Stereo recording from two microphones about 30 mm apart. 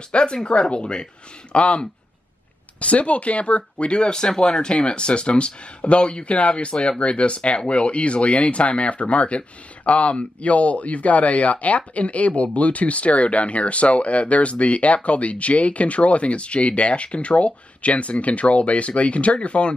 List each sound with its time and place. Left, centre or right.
0.1 s speech: left
4.0 s speech: left